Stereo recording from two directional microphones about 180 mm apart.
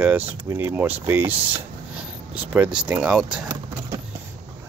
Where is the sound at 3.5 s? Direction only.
20° right (ahead or behind).